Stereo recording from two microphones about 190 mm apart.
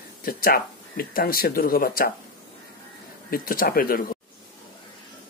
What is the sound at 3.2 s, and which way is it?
Speech, 50° left (ahead or behind).